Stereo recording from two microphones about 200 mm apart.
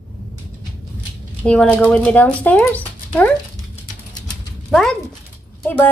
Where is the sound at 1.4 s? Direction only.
5° left (ahead or behind).